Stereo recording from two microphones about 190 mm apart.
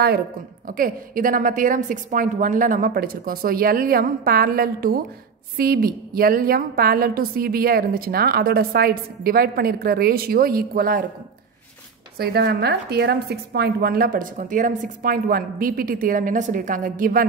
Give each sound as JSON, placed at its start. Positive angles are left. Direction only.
{"t": 0.7, "sound": "a woman's voice", "side_deg": -45}
{"t": 12.2, "sound": "a woman's voice", "side_deg": -55}